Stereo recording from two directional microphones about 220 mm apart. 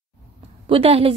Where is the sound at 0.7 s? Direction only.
25° right (ahead or behind).